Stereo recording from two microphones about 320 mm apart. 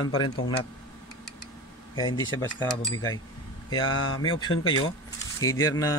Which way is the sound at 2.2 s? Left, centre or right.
Centre.